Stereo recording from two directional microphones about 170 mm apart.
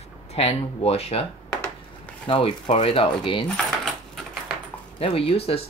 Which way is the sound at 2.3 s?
30° left (ahead or behind).